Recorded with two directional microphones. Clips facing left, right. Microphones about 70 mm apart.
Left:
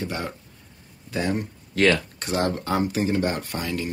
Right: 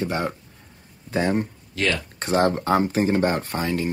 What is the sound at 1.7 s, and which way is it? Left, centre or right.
Speech, left.